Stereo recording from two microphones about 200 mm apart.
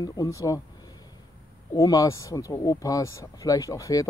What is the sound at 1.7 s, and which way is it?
Speech, 15° left (ahead or behind).